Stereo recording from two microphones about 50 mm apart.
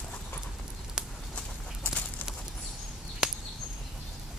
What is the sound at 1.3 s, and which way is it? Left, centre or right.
Chicken, left.